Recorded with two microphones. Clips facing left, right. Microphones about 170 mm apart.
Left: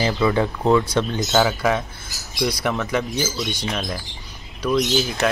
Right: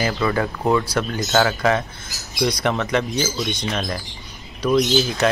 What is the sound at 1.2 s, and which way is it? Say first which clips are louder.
Speech: right 2 dB; centre (ahead or behind).